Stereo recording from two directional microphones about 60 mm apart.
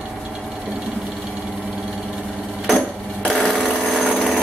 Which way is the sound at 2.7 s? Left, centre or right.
Centre.